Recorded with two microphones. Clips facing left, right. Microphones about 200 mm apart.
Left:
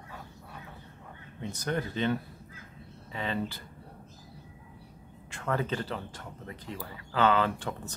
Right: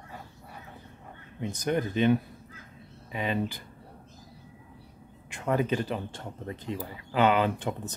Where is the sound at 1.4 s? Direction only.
15° right (ahead or behind).